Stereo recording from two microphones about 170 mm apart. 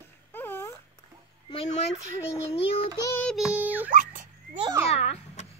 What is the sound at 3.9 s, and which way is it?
Dog, 50° right (ahead or behind).